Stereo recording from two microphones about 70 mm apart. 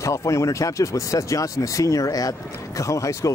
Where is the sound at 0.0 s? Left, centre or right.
Left.